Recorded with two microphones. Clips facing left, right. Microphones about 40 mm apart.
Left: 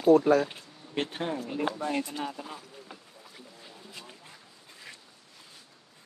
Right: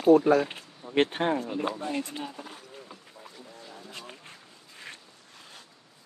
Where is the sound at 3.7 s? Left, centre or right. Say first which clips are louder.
Right 4 dB; right.